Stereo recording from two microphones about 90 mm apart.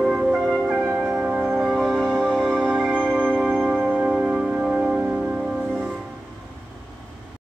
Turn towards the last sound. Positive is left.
turn(degrees=-15)  # may be behind; listen again after turning